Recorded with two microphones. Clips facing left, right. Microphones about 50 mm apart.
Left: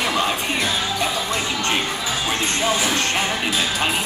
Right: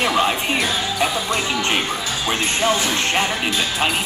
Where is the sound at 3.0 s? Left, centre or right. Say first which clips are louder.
Right 2 dB; centre.